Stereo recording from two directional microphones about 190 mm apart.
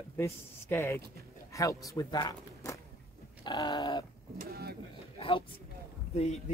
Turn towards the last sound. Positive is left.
turn(degrees=35)  # may be behind; listen again after turning